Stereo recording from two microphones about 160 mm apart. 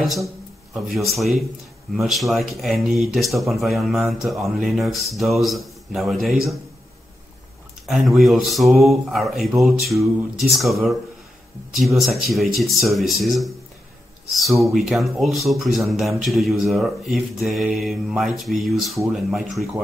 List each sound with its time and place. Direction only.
0.7 s speech: centre (ahead or behind)
7.8 s speech: centre (ahead or behind)